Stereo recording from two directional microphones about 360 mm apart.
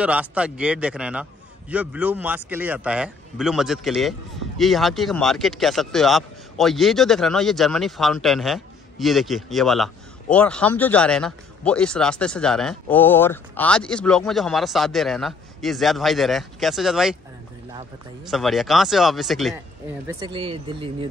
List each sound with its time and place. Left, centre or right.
0.0 s speech: centre
18.3 s speech: centre
20.1 s speech: centre